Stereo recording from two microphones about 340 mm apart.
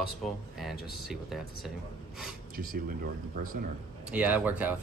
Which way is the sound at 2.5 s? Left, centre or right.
Right.